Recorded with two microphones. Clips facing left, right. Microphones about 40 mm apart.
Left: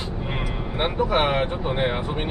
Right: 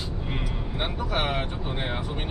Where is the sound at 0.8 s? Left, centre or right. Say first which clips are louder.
Left 7 dB; left.